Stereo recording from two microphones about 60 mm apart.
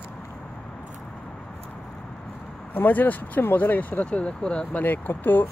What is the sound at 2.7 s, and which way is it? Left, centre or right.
Speech, left.